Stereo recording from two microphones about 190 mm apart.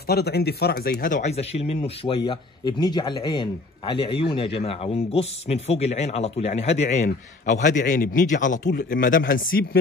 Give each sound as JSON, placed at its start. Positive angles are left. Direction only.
{"t": 0.0, "sound": "a man's voice", "side_deg": 55}